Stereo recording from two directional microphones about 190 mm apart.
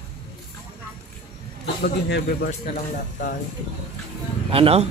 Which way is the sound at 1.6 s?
55° left (ahead or behind).